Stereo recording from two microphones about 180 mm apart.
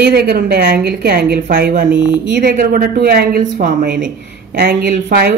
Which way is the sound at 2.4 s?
55° right (ahead or behind).